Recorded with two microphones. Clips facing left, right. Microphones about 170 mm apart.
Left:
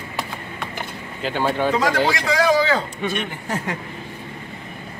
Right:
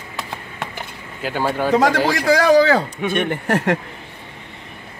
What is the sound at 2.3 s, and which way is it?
Speech, 70° right (ahead or behind).